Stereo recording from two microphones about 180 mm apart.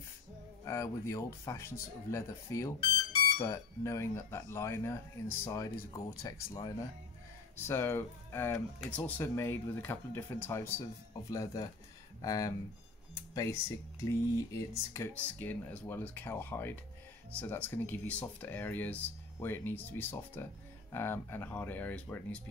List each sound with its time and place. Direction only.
0.7 s speech: 15° left (ahead or behind)